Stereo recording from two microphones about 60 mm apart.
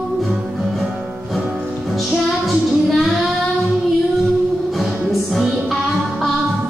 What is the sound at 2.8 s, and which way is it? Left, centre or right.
Child singing, centre.